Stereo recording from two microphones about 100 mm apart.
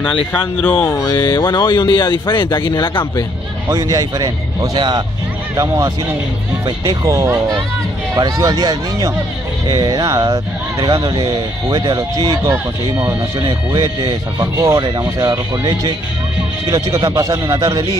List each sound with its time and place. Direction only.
0.3 s speech: 20° left (ahead or behind)
0.9 s speech: 40° left (ahead or behind)
3.6 s a man's voice: 35° right (ahead or behind)
7.1 s a man's voice: 30° right (ahead or behind)
11.2 s speech: 50° right (ahead or behind)
12.0 s a man's voice: 35° right (ahead or behind)
13.4 s speech: 50° right (ahead or behind); by 14.8 s 35° right (ahead or behind)
14.8 s speech: 50° right (ahead or behind)
15.0 s a man's voice: 35° right (ahead or behind)